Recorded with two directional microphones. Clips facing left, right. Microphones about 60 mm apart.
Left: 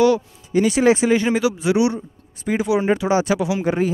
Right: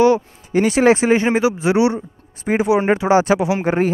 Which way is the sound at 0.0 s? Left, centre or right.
Right.